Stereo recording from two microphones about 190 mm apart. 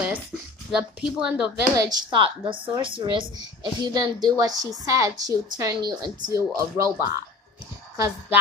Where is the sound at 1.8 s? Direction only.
25° right (ahead or behind).